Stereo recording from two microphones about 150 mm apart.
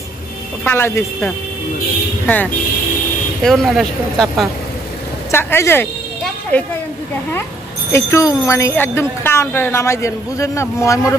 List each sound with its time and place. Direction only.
0.7 s speech: 15° left (ahead or behind)
3.4 s speech: centre (ahead or behind)
5.3 s speech: 15° left (ahead or behind)
7.9 s speech: 20° left (ahead or behind)